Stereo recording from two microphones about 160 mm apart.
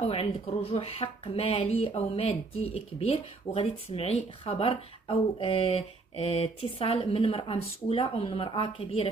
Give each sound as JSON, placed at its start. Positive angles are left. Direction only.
{"t": 0.0, "sound": "speech", "side_deg": 35}